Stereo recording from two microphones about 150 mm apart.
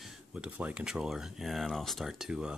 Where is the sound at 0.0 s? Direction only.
5° right (ahead or behind).